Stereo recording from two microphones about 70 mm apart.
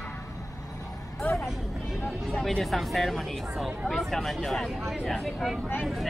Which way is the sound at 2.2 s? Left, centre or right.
Centre.